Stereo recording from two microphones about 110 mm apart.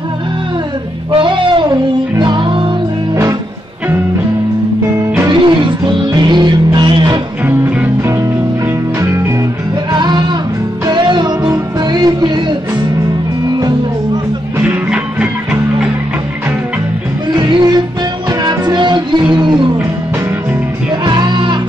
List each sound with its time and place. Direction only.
1.1 s music: 50° right (ahead or behind)
5.3 s music: 50° right (ahead or behind)
7.4 s music: 20° right (ahead or behind)
9.9 s music: 40° right (ahead or behind)
14.6 s music: 10° right (ahead or behind)
17.4 s music: 45° right (ahead or behind)
21.0 s music: 40° right (ahead or behind)